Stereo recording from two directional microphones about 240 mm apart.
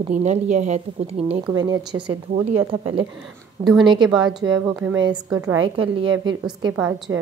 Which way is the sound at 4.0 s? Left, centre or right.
Centre.